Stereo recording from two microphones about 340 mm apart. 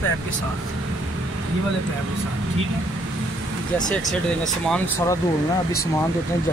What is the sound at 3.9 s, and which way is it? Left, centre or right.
Speech, centre.